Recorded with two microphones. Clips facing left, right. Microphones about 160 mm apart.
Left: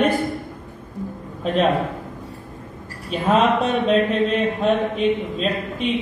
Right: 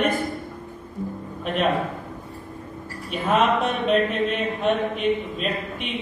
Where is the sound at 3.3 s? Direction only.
35° left (ahead or behind).